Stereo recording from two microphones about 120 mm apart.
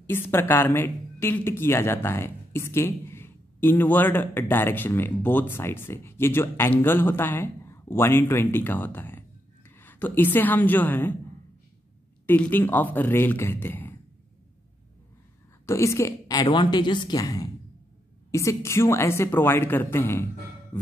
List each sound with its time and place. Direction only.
0.0 s a woman's voice: 20° left (ahead or behind)
12.3 s speech: 15° left (ahead or behind)
15.6 s a woman's voice: 25° left (ahead or behind)
16.4 s speech: 40° left (ahead or behind); by 20.2 s 20° left (ahead or behind)
20.7 s music: 20° left (ahead or behind)